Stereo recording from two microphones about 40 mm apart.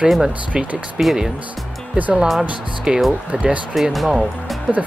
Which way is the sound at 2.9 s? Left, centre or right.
Right.